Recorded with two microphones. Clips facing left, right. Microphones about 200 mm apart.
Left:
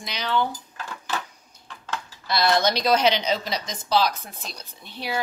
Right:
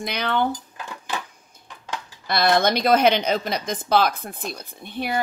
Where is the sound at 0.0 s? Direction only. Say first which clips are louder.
Right 2 dB; 55° right (ahead or behind).